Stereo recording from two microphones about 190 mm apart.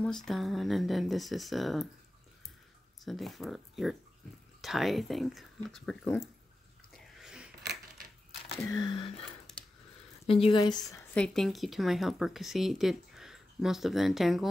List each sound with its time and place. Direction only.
0.0 s speech: centre (ahead or behind)
3.1 s speech: centre (ahead or behind)
7.2 s biting: 5° right (ahead or behind)
8.5 s a sound: 15° left (ahead or behind)
10.4 s speech: 25° left (ahead or behind)
11.1 s speech: 5° left (ahead or behind)